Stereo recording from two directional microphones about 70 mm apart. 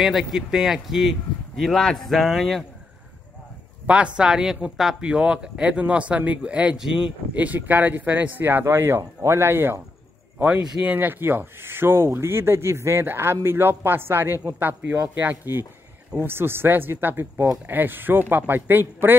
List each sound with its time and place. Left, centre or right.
0.0 s speech: centre
3.8 s speech: centre
6.8 s speech: centre
7.3 s speech: right
10.6 s speech: centre
10.9 s speech: right